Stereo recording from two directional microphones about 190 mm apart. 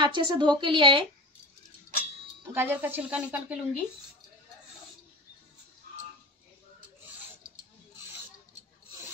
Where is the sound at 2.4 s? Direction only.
10° right (ahead or behind).